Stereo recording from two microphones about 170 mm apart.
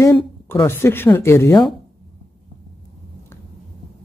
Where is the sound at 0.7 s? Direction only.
15° left (ahead or behind).